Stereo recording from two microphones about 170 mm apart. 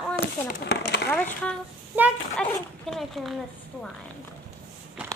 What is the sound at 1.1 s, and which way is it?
Speech, 5° left (ahead or behind).